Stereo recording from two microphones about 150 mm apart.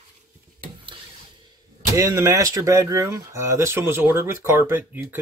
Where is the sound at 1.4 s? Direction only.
20° right (ahead or behind).